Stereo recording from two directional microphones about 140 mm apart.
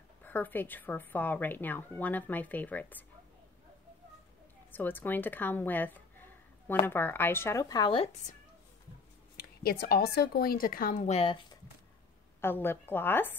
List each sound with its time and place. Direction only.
0.2 s a woman's voice: 15° left (ahead or behind)
4.6 s speech: 15° left (ahead or behind); by 8.4 s 50° left (ahead or behind)
9.4 s speech: 90° left; by 11.3 s 50° left (ahead or behind)
12.4 s a woman's voice: 15° left (ahead or behind)